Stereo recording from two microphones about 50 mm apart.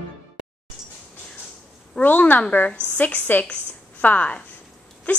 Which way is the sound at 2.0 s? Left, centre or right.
Left.